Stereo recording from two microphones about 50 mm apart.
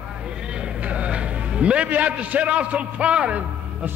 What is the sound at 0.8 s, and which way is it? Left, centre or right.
A man's voice, right.